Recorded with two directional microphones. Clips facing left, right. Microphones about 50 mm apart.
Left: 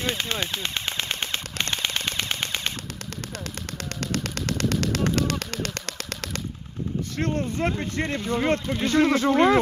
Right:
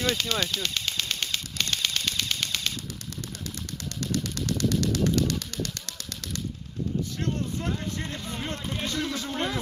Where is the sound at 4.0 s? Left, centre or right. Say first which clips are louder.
Left 1 dB; left.